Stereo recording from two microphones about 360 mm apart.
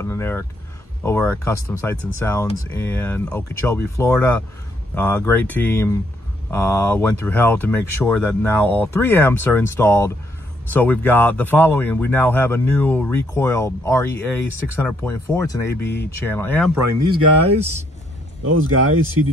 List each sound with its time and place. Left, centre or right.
0.0 s speech: centre
17.1 s speech: centre
18.4 s speech: right